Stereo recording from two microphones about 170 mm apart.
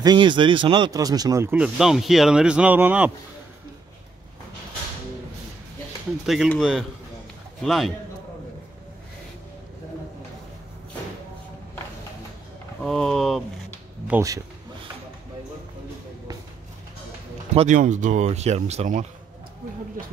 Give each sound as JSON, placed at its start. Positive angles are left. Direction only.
{"t": 0.0, "sound": "speech", "side_deg": -25}
{"t": 6.2, "sound": "speech", "side_deg": 0}
{"t": 12.8, "sound": "speech", "side_deg": 0}
{"t": 17.6, "sound": "speech", "side_deg": -45}